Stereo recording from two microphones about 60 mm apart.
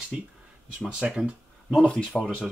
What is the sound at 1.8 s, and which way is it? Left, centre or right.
Speech, centre.